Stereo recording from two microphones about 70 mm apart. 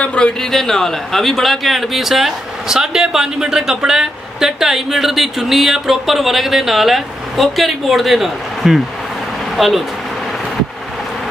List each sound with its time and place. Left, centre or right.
0.0 s speech: centre
0.4 s speech: centre